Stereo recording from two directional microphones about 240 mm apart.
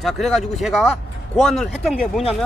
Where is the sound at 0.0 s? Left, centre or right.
Centre.